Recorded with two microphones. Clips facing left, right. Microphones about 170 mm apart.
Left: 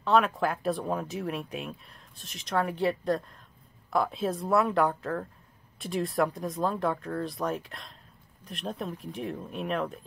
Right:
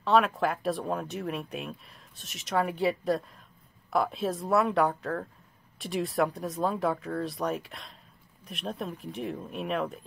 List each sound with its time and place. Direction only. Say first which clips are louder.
0.0 s speech: even; centre (ahead or behind)